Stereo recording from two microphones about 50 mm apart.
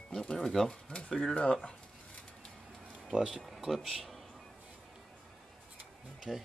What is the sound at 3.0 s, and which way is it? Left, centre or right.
Speech, centre.